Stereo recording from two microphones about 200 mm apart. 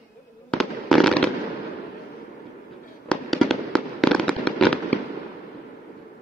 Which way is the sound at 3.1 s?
Centre (ahead or behind).